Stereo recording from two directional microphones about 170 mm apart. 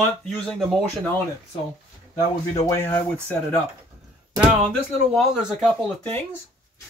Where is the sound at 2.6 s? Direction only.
15° left (ahead or behind).